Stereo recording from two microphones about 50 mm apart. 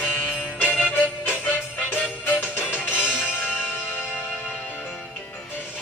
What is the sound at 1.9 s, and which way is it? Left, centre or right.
Music, left.